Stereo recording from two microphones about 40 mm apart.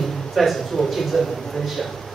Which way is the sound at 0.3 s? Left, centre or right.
Centre.